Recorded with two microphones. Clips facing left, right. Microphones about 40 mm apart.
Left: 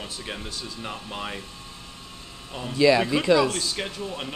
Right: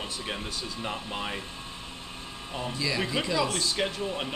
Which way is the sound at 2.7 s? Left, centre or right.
Left.